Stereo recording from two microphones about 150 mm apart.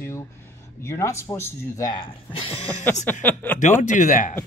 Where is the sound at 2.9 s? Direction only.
15° left (ahead or behind).